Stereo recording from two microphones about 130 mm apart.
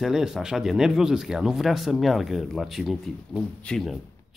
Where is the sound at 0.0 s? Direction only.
5° right (ahead or behind).